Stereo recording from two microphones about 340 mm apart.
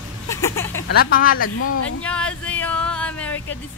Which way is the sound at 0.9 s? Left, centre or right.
Left.